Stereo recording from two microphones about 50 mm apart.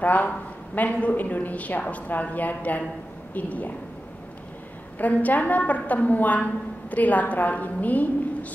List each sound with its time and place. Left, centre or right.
0.0 s a woman's voice: left
4.9 s a woman's voice: left